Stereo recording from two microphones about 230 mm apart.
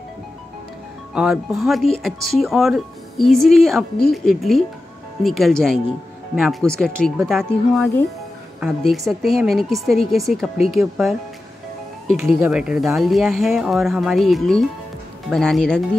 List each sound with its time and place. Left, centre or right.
1.1 s speech: centre
12.4 s speech: centre